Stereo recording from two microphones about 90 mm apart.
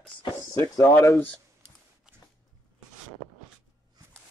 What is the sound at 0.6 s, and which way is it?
Speech, 35° left (ahead or behind).